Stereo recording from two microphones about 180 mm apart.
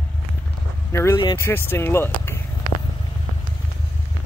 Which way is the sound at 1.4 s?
10° left (ahead or behind).